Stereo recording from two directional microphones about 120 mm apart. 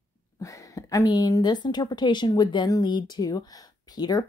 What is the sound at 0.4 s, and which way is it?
Speech, 25° left (ahead or behind).